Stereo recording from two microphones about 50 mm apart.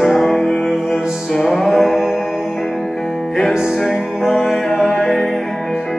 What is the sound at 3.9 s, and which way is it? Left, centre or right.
Music, centre.